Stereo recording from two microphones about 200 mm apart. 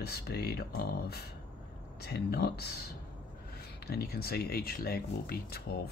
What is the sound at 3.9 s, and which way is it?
Speech, 50° left (ahead or behind).